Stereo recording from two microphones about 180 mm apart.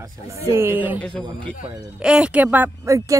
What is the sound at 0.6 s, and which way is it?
A woman's voice, 10° right (ahead or behind).